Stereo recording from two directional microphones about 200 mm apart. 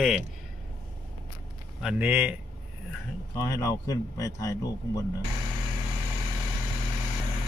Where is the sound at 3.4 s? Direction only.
15° left (ahead or behind).